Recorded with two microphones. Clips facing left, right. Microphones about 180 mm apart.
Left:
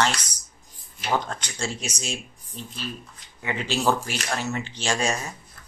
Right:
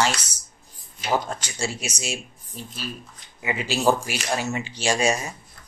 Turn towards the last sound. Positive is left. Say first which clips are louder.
# right 3 dB
turn(degrees=-10)  # may be behind; listen again after turning